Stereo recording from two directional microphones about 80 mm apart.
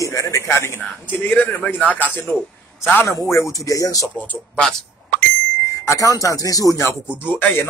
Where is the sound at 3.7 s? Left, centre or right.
Left.